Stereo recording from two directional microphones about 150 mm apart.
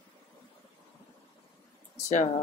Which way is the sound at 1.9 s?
55° left (ahead or behind).